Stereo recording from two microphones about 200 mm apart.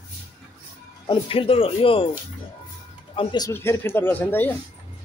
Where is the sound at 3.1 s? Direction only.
25° left (ahead or behind).